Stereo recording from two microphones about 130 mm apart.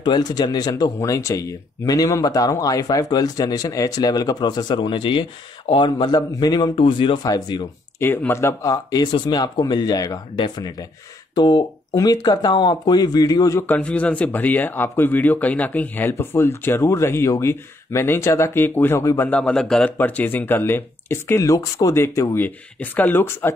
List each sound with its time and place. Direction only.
0.0 s speech: 35° left (ahead or behind)
8.0 s speech: 15° left (ahead or behind)